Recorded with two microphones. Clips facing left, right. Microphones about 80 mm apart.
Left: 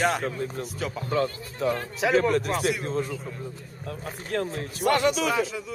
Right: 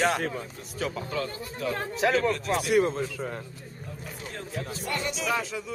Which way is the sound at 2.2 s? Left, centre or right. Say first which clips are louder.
Left 4 dB; left.